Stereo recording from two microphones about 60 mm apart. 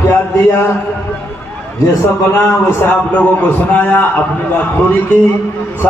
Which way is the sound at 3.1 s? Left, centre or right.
Left.